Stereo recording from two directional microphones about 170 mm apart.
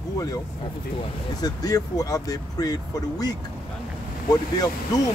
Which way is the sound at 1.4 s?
20° left (ahead or behind).